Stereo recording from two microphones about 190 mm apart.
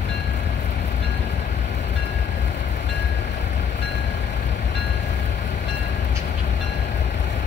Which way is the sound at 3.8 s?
65° left (ahead or behind).